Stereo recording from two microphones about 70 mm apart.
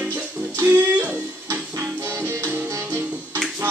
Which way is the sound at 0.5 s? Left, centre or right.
Right.